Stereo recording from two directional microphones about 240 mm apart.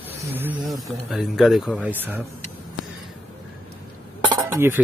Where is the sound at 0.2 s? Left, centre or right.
Centre.